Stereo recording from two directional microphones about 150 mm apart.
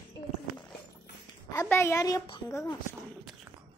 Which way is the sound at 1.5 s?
20° left (ahead or behind).